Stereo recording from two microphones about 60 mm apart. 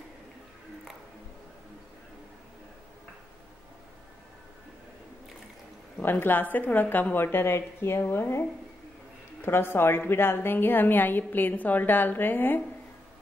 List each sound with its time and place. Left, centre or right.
6.0 s a woman's voice: left